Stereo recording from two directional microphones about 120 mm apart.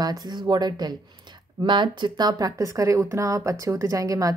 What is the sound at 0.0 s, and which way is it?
Speech, 35° right (ahead or behind).